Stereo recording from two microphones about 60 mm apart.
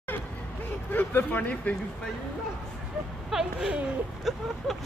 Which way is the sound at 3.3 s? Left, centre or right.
Centre.